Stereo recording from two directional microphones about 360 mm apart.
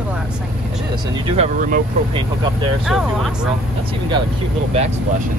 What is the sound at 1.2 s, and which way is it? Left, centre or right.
Speech, centre.